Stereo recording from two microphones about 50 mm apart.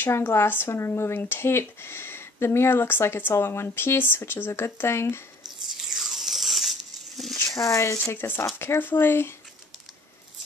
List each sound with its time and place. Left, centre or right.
0.0 s speech: left
4.5 s speech: left
5.9 s a sound: centre
7.5 s speech: left
8.1 s speech: left